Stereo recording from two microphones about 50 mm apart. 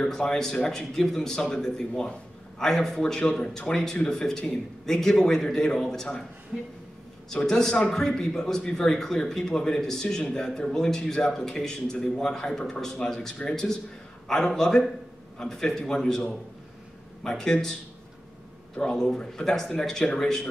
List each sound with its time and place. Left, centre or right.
0.0 s speech: centre
7.4 s speech: centre
17.2 s speech: centre
18.8 s speech: centre